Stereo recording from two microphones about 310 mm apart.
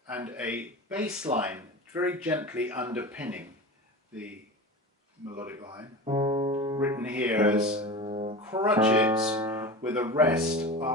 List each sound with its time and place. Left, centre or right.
0.1 s speech: centre
5.2 s speech: centre
7.6 s music: centre
8.5 s speech: centre